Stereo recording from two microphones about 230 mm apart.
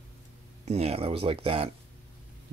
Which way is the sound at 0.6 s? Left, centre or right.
Right.